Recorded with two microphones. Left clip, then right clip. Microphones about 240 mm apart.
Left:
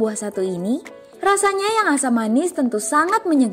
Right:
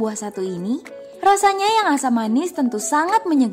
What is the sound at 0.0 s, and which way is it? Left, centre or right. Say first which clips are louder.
A woman's voice: left 3 dB; centre.